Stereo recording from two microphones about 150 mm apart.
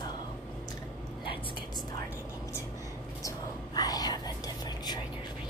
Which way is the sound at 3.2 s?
25° left (ahead or behind).